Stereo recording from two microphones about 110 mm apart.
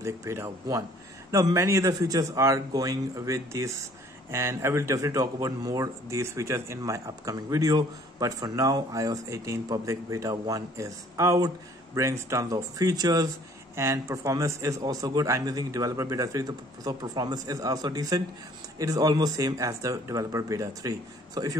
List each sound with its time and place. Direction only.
0.0 s speech: 25° right (ahead or behind)